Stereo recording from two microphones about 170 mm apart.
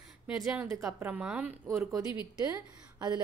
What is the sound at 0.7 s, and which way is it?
Speech, 15° right (ahead or behind).